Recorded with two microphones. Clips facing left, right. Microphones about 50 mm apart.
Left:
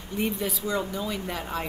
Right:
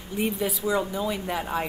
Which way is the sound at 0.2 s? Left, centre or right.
Centre.